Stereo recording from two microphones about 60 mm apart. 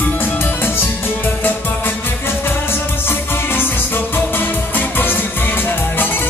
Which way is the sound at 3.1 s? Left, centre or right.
Left.